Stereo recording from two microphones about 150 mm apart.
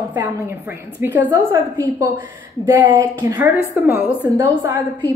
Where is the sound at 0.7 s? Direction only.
15° right (ahead or behind).